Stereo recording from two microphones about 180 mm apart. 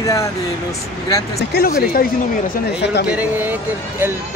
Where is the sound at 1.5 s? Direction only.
55° left (ahead or behind).